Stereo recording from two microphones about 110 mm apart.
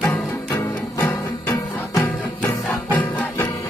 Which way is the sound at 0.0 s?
5° left (ahead or behind).